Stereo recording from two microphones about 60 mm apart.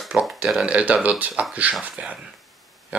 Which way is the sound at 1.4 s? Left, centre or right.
Right.